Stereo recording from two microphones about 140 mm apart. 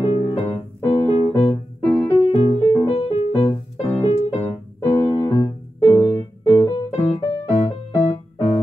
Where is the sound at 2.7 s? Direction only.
40° left (ahead or behind).